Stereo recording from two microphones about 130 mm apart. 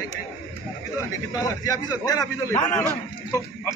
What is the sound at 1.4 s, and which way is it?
A man's voice, 30° left (ahead or behind).